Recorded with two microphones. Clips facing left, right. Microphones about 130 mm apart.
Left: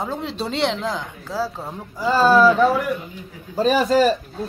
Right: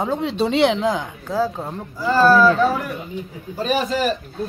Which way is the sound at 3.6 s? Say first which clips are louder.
Left 5 dB; 40° left (ahead or behind).